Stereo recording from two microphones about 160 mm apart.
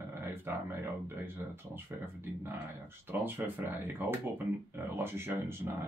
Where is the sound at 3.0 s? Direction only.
15° right (ahead or behind).